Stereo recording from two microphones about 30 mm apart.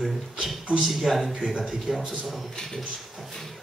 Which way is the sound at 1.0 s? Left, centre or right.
Centre.